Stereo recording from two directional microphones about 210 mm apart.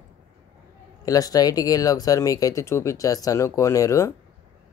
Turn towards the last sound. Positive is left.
turn(degrees=15)  # may be behind; listen again after turning